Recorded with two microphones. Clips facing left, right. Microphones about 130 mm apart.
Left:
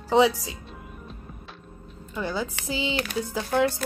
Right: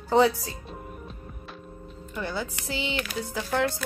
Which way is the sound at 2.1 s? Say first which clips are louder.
Left 3 dB; 15° left (ahead or behind).